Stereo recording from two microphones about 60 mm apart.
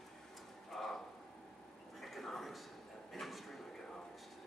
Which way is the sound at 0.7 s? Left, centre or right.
Centre.